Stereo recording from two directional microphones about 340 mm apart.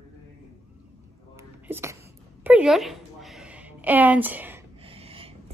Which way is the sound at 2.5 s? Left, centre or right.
Centre.